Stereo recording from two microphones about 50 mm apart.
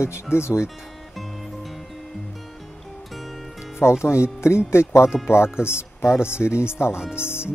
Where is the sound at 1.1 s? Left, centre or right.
Centre.